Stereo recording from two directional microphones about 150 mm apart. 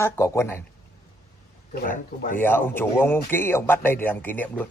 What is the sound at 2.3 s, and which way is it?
A man's voice, 15° left (ahead or behind).